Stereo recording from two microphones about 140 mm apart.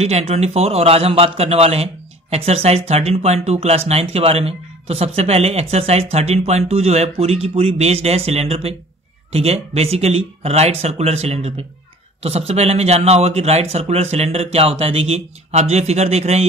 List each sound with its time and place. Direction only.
0.0 s speech: 45° right (ahead or behind)